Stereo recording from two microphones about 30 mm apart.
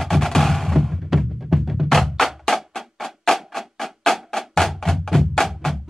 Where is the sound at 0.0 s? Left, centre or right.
Centre.